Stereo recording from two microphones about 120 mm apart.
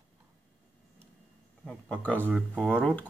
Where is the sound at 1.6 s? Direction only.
5° left (ahead or behind).